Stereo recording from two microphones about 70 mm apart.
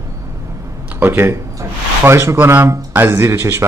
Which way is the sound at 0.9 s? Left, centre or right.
Right.